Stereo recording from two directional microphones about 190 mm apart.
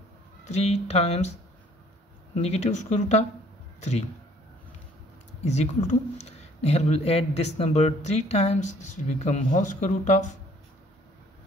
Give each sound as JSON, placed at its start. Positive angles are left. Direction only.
{"t": 0.5, "sound": "speech", "side_deg": 35}
{"t": 2.3, "sound": "speech", "side_deg": 35}
{"t": 5.4, "sound": "speech", "side_deg": 35}